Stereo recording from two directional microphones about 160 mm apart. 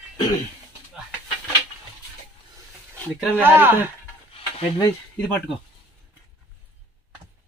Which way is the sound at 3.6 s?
15° right (ahead or behind).